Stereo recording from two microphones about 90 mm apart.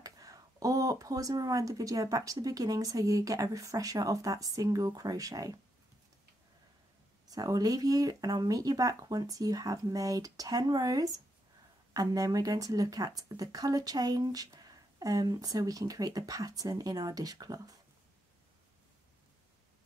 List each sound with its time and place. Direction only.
0.0 s speech: 40° right (ahead or behind)
7.2 s speech: 45° right (ahead or behind)